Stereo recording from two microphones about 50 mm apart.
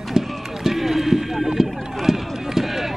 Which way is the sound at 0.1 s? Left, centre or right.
Centre.